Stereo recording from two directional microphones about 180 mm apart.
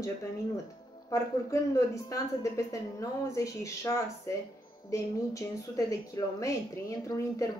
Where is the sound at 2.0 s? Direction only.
20° left (ahead or behind).